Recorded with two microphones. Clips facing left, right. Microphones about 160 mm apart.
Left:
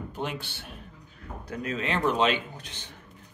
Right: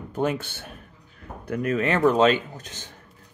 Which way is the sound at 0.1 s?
45° right (ahead or behind).